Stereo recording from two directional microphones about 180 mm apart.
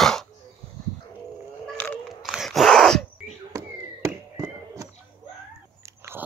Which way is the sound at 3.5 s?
15° right (ahead or behind).